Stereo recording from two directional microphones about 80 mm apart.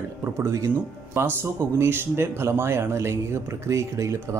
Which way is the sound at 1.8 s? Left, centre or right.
Right.